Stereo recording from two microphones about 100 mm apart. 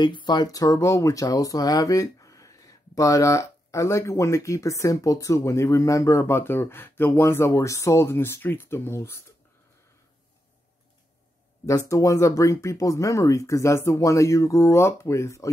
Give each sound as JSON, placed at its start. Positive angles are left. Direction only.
{"t": 0.0, "sound": "speech", "side_deg": 50}
{"t": 11.6, "sound": "speech", "side_deg": 35}